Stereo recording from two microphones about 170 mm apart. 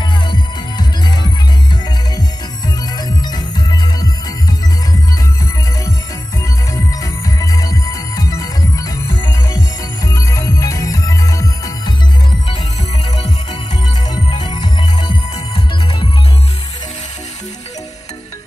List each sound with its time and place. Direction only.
0.3 s music: 25° left (ahead or behind)
3.0 s music: 25° left (ahead or behind)
6.7 s music: 20° left (ahead or behind)
14.1 s music: 25° left (ahead or behind)